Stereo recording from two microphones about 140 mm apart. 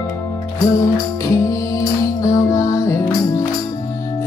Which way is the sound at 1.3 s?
25° left (ahead or behind).